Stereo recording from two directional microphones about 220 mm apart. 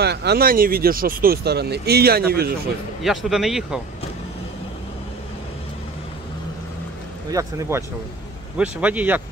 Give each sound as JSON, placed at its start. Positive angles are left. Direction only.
{"t": 0.0, "sound": "speech", "side_deg": -50}
{"t": 3.0, "sound": "speech", "side_deg": 0}
{"t": 7.2, "sound": "speech", "side_deg": -15}